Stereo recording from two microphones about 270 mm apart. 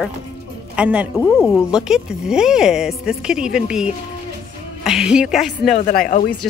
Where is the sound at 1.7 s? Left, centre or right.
Centre.